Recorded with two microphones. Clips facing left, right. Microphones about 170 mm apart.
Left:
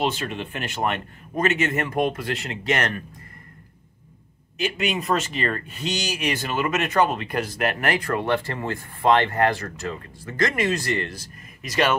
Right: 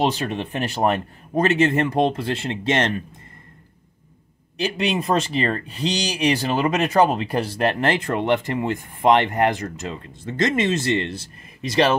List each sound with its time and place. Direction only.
0.0 s speech: 40° right (ahead or behind)
4.6 s speech: 35° right (ahead or behind)